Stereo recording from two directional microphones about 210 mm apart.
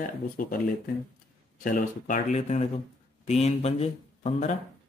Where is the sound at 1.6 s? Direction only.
40° left (ahead or behind).